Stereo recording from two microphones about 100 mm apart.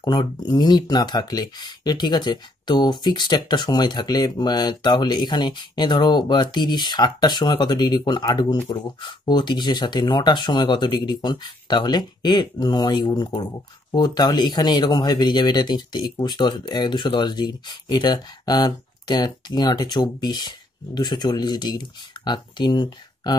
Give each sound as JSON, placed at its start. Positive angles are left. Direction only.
{"t": 0.0, "sound": "speech", "side_deg": 45}